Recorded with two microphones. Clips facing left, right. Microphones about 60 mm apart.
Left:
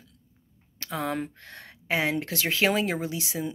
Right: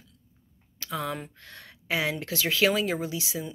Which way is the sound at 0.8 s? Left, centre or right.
Left.